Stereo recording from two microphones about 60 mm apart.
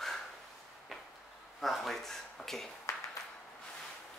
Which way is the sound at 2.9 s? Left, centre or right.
Left.